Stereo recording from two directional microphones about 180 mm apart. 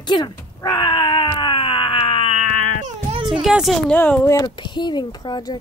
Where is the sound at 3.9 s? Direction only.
10° left (ahead or behind).